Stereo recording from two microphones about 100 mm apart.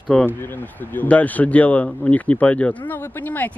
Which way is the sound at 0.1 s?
10° left (ahead or behind).